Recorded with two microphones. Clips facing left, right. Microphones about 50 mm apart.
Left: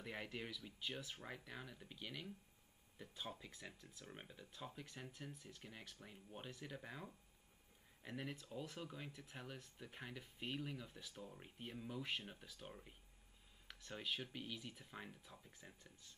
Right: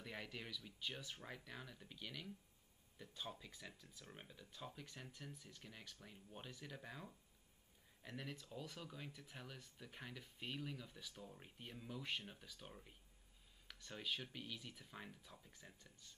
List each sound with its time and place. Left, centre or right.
0.0 s speech: centre